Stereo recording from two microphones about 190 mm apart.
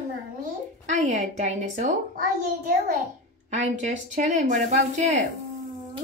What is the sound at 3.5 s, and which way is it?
Speech, 40° right (ahead or behind).